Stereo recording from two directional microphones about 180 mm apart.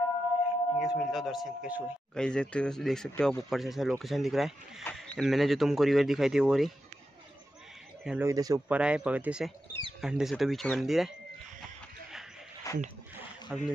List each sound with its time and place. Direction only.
0.7 s speech: centre (ahead or behind)
8.0 s speech: 5° right (ahead or behind)
8.3 s speech: 20° right (ahead or behind)
8.6 s speech: 5° right (ahead or behind)
12.7 s a sound: 20° left (ahead or behind)
13.5 s speech: 10° right (ahead or behind)